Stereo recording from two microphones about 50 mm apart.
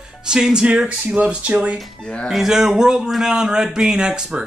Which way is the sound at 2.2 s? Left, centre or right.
Centre.